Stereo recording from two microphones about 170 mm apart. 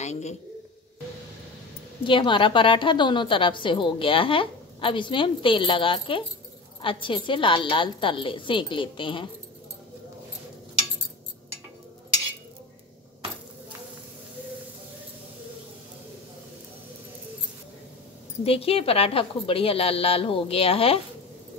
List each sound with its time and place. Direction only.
0.0 s a man's voice: 40° left (ahead or behind)
2.0 s a woman's voice: 30° left (ahead or behind)
18.4 s a woman's voice: 35° left (ahead or behind)